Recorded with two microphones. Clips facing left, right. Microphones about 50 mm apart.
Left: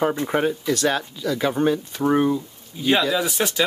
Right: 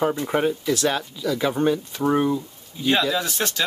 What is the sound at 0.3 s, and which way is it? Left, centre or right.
Speech, centre.